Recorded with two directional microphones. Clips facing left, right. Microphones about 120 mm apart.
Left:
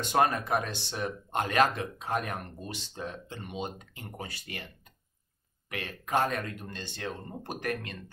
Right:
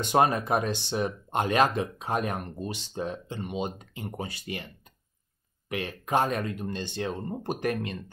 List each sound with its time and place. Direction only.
0.1 s speech: 20° right (ahead or behind)
5.7 s speech: 20° right (ahead or behind)